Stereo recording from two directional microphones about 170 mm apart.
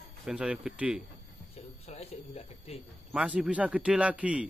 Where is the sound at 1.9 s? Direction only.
40° left (ahead or behind).